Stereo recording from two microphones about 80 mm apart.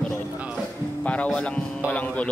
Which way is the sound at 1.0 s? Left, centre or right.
Centre.